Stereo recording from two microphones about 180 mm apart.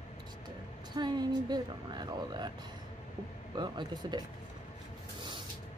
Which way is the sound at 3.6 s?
25° right (ahead or behind).